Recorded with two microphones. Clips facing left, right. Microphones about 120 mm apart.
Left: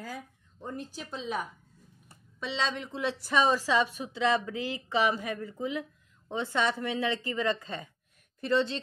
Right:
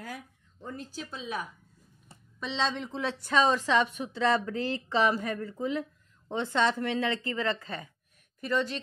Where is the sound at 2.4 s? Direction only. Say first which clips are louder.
Right 1 dB; centre (ahead or behind).